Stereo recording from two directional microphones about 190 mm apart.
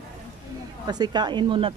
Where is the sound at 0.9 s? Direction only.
20° right (ahead or behind).